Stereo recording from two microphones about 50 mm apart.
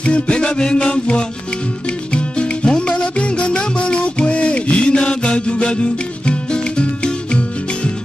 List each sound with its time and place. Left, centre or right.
0.0 s music: left